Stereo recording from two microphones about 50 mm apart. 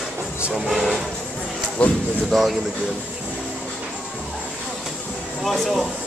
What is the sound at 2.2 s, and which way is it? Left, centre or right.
Speech, centre.